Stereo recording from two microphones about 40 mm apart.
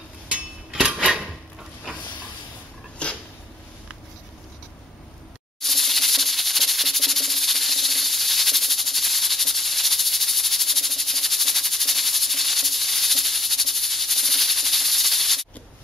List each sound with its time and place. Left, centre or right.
0.7 s dishes: right
3.0 s a sound: left
5.6 s music: centre